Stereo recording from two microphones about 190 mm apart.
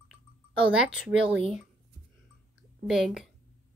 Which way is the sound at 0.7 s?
5° right (ahead or behind).